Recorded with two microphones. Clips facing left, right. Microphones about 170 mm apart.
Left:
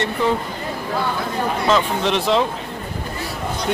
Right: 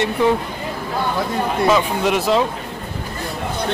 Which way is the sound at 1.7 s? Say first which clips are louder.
Even; 10° right (ahead or behind).